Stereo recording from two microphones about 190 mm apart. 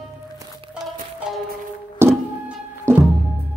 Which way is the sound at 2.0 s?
10° right (ahead or behind).